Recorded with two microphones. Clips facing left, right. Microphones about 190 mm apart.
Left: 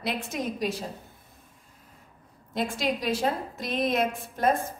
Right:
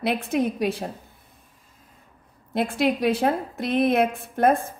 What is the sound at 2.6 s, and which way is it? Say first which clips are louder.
A woman's voice: right 6 dB; 60° right (ahead or behind).